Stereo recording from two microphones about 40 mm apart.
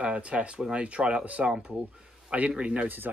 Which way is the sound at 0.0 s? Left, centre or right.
Right.